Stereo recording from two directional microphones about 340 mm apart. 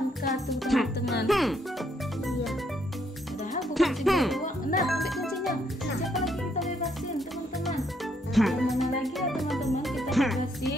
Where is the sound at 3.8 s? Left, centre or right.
Centre.